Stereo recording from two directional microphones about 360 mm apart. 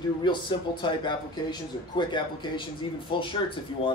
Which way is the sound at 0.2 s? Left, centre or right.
Centre.